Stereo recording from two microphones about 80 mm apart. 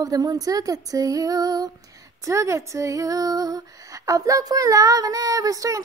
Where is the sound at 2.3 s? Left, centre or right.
Right.